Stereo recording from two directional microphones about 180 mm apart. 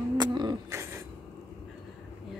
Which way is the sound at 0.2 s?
25° right (ahead or behind).